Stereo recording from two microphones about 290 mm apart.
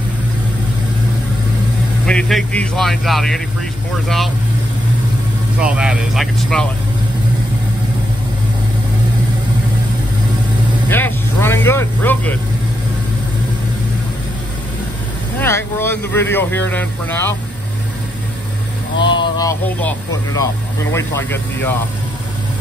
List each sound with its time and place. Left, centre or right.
2.0 s a man's voice: centre
5.6 s a man's voice: centre
10.9 s speech: centre
15.3 s speech: centre
19.1 s speech: centre